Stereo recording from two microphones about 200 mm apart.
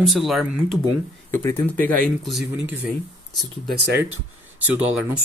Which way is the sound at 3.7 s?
55° right (ahead or behind).